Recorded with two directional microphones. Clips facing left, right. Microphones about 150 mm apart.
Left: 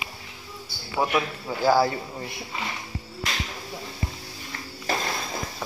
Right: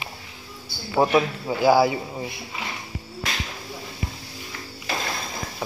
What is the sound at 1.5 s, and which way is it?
Speech, 15° right (ahead or behind).